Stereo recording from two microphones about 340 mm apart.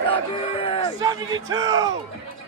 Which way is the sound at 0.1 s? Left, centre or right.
Centre.